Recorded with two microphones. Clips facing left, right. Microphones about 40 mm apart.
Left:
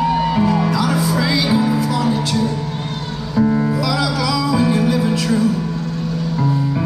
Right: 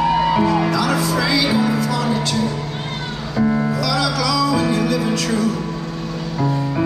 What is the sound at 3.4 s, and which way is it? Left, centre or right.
Music, centre.